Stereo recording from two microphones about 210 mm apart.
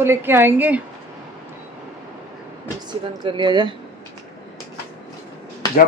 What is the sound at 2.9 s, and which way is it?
Speech, 20° right (ahead or behind).